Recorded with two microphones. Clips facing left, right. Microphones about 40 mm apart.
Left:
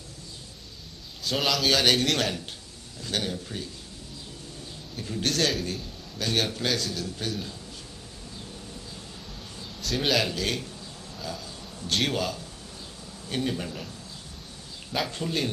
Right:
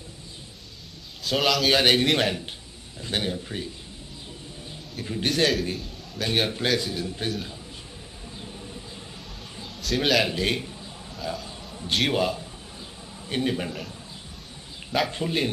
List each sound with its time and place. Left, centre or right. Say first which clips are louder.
1.2 s a man's voice: right 3 dB; centre
1.7 s a man's voice: right 2 dB; right
5.0 s a man's voice: right 3 dB; right
9.8 s a man's voice: right 3 dB; centre
10.2 s a man's voice: right 3 dB; right
11.8 s a man's voice: right 3 dB; centre
15.0 s a man's voice: right 3 dB; right